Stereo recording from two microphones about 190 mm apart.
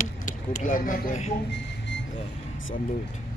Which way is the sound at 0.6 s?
45° left (ahead or behind).